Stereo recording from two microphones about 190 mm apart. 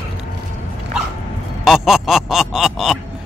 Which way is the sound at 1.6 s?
Centre (ahead or behind).